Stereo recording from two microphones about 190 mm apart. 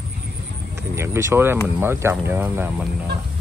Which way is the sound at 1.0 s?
15° right (ahead or behind).